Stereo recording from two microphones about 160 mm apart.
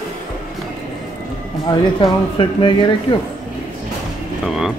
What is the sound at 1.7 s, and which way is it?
Speech, 25° left (ahead or behind).